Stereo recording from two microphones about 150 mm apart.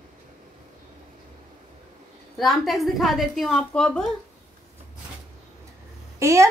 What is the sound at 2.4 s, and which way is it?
A woman's voice, centre (ahead or behind).